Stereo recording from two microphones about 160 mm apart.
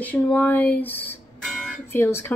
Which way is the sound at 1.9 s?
15° left (ahead or behind).